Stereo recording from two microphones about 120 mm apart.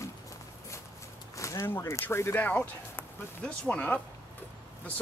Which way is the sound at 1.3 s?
25° left (ahead or behind).